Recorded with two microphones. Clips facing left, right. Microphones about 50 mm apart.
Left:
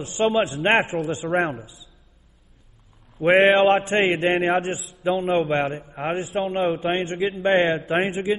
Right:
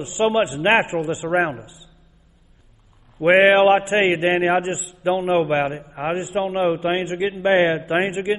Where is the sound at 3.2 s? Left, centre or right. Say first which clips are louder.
Right 2 dB; centre.